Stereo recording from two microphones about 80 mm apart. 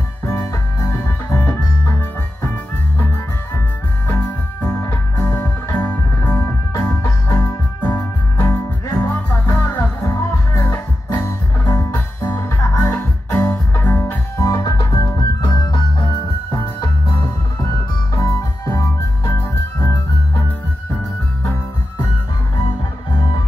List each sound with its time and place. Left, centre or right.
0.2 s music: left
4.1 s music: left
4.6 s music: left
6.3 s music: left
6.8 s music: centre
13.4 s music: left
14.4 s music: left
18.1 s organ: left